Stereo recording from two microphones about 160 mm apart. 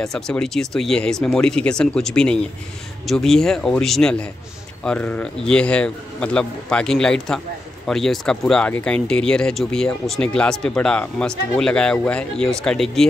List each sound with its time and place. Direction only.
0.0 s a man's voice: 5° left (ahead or behind)